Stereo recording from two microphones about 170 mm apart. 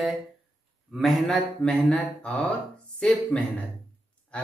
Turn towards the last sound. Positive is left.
turn(degrees=10)  # may be behind; listen again after turning